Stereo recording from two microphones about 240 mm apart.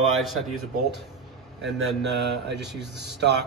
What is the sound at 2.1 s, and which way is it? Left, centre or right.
Speech, right.